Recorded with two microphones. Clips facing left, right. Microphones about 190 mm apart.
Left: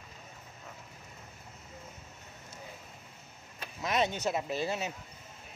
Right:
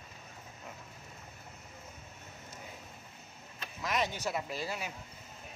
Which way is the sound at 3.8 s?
25° left (ahead or behind).